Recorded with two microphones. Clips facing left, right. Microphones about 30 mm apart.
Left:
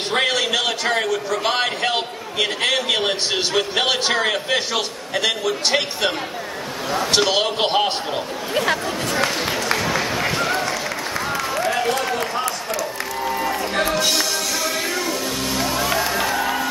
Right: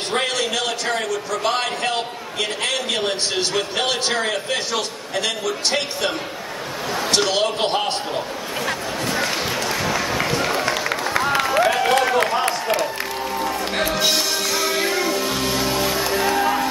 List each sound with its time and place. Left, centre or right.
0.1 s a man's voice: centre
6.9 s a man's voice: centre
11.5 s a sound: right
13.3 s music: centre
13.9 s music: centre
15.9 s music: centre